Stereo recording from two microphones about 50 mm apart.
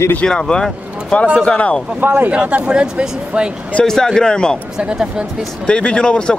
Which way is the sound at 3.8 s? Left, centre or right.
Centre.